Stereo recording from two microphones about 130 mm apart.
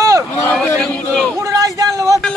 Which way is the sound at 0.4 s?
10° left (ahead or behind).